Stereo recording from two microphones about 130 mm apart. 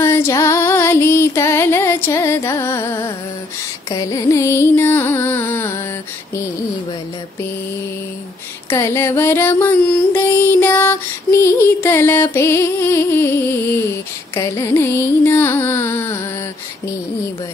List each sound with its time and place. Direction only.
0.0 s music: 20° left (ahead or behind)
8.6 s music: 20° left (ahead or behind)